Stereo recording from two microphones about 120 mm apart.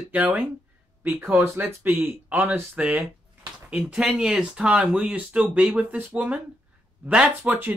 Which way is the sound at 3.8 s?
5° right (ahead or behind).